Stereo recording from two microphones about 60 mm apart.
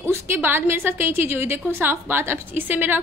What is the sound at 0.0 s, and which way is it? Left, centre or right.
A woman's voice, right.